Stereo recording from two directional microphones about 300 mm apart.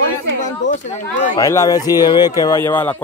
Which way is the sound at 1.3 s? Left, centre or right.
Centre.